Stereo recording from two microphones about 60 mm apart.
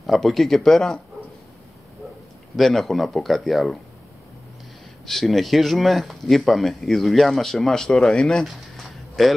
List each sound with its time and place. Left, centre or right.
0.0 s speech: centre
2.5 s speech: centre
5.0 s speech: centre
8.5 s a sound: centre